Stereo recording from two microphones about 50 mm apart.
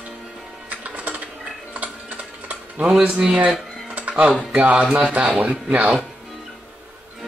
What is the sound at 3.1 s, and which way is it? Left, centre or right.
Speech, centre.